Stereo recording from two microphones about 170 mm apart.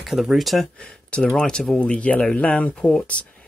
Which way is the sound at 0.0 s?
5° right (ahead or behind).